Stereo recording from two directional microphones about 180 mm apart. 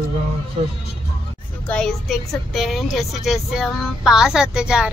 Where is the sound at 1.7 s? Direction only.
Centre (ahead or behind).